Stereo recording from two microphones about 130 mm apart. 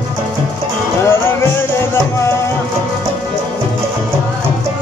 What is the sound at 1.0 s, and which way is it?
Music, 20° left (ahead or behind).